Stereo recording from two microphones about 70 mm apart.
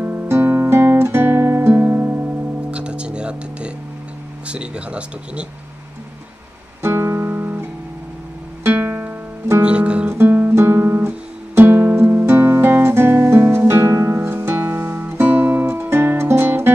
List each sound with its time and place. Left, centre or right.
0.0 s guitar: right
1.7 s music: right
2.7 s music: centre
4.5 s speech: centre
6.8 s music: right
8.7 s music: right
9.6 s guitar: centre
10.2 s guitar: right